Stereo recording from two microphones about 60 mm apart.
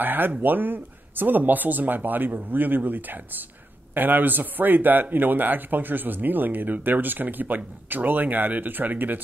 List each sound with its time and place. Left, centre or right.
0.0 s speech: right